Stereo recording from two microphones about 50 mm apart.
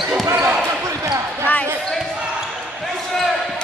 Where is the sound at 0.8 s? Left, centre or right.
Right.